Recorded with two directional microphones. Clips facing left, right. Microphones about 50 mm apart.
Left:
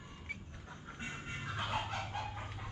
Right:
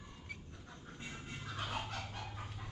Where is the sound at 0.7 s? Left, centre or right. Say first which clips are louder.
Left 4 dB; left.